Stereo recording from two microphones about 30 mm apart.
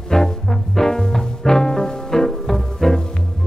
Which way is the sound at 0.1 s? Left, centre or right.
Left.